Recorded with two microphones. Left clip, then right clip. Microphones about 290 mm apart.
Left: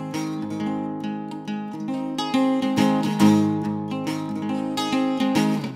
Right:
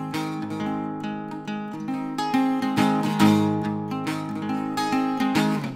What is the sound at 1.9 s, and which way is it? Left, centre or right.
Music, right.